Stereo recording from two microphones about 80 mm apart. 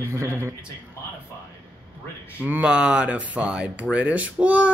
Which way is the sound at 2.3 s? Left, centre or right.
Centre.